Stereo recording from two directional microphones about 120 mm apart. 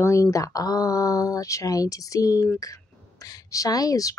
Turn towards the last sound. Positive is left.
turn(degrees=30)  # may be behind; listen again after turning